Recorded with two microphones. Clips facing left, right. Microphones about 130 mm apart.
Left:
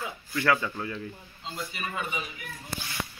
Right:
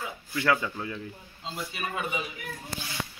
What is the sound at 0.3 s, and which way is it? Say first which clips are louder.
Speech: even; 15° right (ahead or behind).